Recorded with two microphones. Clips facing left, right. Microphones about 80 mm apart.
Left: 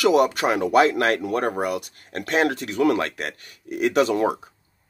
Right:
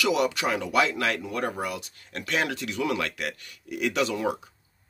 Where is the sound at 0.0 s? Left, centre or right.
Left.